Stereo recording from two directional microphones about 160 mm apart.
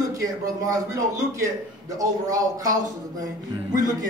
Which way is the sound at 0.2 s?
20° right (ahead or behind).